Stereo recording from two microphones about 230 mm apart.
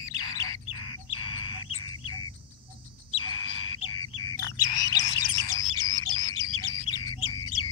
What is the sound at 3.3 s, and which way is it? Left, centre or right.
Bird, left.